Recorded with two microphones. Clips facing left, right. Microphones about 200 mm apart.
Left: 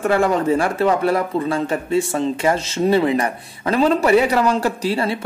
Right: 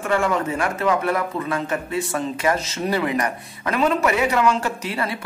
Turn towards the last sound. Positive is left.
turn(degrees=30)  # may be behind; listen again after turning